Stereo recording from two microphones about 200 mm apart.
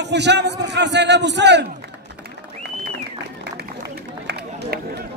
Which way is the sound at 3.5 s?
55° right (ahead or behind).